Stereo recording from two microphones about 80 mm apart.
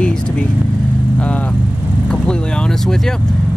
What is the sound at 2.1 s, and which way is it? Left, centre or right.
Speech, centre.